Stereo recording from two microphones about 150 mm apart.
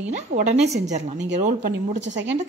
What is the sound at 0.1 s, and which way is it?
A woman's voice, 55° right (ahead or behind).